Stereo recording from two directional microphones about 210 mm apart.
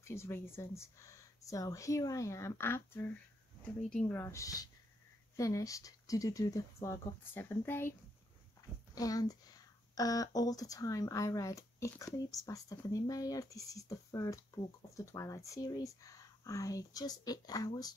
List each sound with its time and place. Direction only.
0.0 s speech: 10° left (ahead or behind)
8.9 s speech: 15° left (ahead or behind)